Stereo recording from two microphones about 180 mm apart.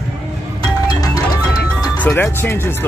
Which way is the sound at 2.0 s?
10° left (ahead or behind).